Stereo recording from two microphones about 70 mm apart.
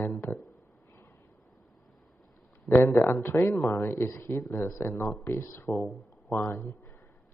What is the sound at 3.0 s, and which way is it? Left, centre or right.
Speech, left.